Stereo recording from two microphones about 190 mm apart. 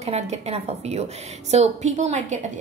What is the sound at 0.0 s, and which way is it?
A woman's voice, 35° right (ahead or behind).